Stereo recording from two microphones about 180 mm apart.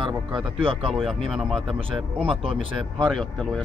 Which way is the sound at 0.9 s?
Centre (ahead or behind).